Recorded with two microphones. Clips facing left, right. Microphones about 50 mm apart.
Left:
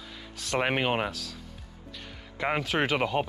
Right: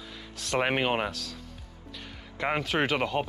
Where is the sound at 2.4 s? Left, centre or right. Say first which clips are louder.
Even; centre.